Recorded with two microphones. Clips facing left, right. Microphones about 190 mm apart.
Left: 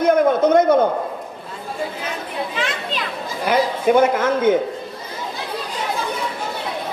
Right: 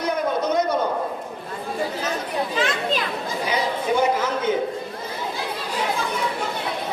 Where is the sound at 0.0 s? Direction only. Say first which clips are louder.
Left 8 dB; 50° left (ahead or behind).